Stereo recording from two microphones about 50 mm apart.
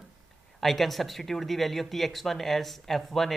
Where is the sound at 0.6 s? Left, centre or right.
Centre.